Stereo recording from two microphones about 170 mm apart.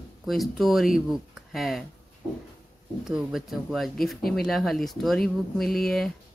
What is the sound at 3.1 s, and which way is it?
A woman's voice, 5° right (ahead or behind).